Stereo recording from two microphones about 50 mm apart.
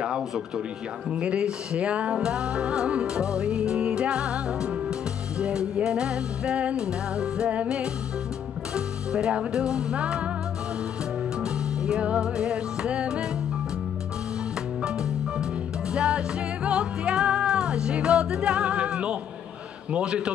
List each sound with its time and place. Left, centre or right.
1.1 s music: centre
11.8 s music: centre
15.9 s music: centre